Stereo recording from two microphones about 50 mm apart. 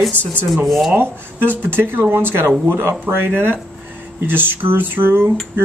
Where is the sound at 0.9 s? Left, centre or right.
Right.